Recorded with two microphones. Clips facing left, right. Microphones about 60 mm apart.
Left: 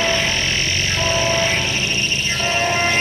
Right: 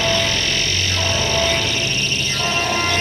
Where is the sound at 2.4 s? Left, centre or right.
Left.